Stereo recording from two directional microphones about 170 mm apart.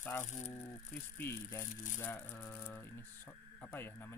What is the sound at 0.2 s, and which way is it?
Speech, 45° left (ahead or behind).